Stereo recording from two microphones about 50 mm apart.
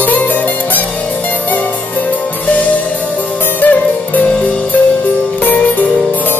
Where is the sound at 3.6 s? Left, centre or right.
Left.